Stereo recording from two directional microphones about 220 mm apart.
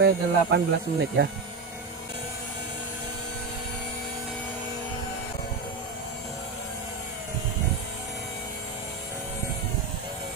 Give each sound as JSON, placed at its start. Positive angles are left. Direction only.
{"t": 0.0, "sound": "speech", "side_deg": -50}